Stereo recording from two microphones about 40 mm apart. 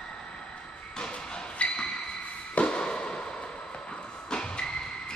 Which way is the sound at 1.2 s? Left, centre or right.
Left.